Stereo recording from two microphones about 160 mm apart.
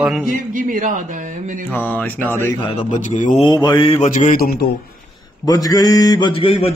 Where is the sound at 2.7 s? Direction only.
50° left (ahead or behind).